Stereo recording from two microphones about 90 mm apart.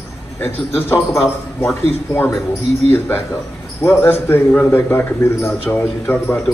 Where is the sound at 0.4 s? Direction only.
20° left (ahead or behind).